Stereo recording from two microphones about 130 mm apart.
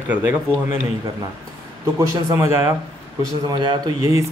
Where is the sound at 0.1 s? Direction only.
15° right (ahead or behind).